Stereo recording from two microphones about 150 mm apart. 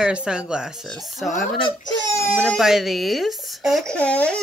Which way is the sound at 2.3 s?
Centre (ahead or behind).